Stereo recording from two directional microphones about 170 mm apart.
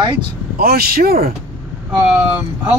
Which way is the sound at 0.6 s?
60° right (ahead or behind).